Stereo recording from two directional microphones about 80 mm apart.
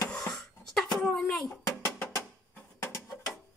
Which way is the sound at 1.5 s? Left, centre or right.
Left.